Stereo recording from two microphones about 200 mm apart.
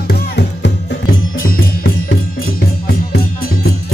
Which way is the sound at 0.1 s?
55° left (ahead or behind).